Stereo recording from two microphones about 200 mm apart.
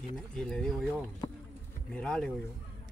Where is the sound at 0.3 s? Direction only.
5° left (ahead or behind).